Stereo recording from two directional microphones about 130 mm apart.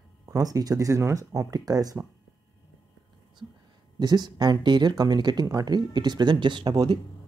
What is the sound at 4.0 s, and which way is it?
Speech, 30° right (ahead or behind).